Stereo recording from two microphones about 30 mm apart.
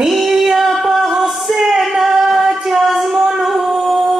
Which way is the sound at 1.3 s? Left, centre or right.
Centre.